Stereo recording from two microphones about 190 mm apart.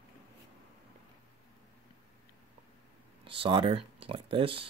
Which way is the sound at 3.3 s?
30° right (ahead or behind).